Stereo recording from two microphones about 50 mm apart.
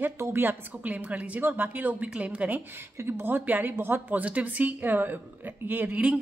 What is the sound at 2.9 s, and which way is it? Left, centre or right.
A woman's voice, right.